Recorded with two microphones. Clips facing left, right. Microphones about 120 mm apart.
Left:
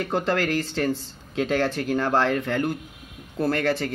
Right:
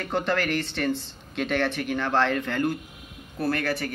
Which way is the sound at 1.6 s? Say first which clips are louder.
Left 3 dB; 35° left (ahead or behind).